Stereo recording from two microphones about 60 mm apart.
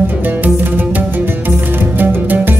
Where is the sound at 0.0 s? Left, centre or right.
Right.